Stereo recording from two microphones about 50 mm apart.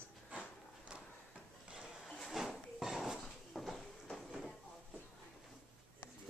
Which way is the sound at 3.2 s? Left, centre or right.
Centre.